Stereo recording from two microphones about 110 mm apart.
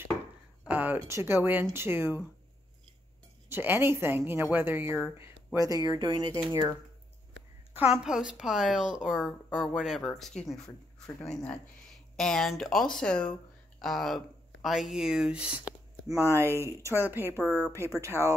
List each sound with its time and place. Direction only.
0.7 s speech: 15° right (ahead or behind)
3.4 s a woman's voice: 20° right (ahead or behind)
5.9 s speech: 45° right (ahead or behind)
7.9 s speech: 5° right (ahead or behind)
16.6 s a woman's voice: 25° right (ahead or behind)
17.4 s speech: 20° left (ahead or behind)
18.0 s a woman's voice: 25° right (ahead or behind)